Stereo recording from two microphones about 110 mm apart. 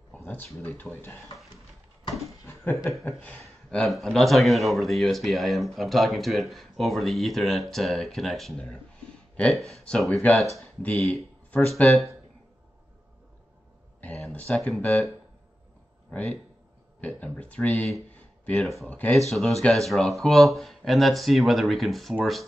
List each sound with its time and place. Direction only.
0.1 s speech: 15° left (ahead or behind)
2.2 s a sound: 25° left (ahead or behind)
3.1 s speech: 15° left (ahead or behind)
3.3 s a man's voice: 5° left (ahead or behind)
14.3 s speech: 15° left (ahead or behind)
16.1 s speech: 10° left (ahead or behind)
18.1 s a sound: 10° left (ahead or behind)
18.9 s speech: 15° left (ahead or behind)
19.1 s a man's voice: centre (ahead or behind)